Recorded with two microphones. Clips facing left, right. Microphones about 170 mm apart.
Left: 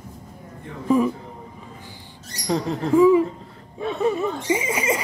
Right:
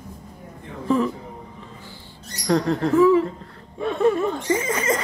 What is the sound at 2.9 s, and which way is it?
Speech, 15° left (ahead or behind).